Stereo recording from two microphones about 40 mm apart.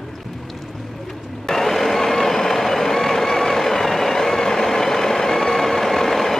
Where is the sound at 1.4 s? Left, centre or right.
Centre.